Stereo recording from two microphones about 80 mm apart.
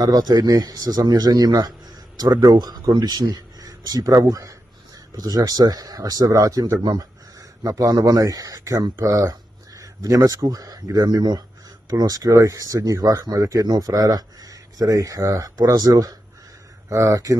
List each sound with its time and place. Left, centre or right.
0.0 s speech: right